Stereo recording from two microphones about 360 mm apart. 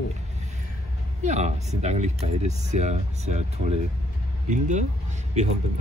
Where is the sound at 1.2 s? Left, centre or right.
Centre.